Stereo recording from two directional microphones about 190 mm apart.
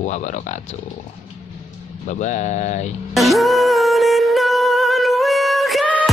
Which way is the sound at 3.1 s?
Centre (ahead or behind).